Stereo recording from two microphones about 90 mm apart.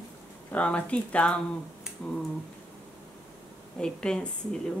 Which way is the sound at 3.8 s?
10° left (ahead or behind).